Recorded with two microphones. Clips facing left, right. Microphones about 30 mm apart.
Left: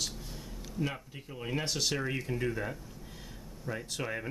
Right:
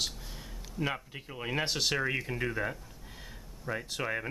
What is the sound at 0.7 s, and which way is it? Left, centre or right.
Speech, right.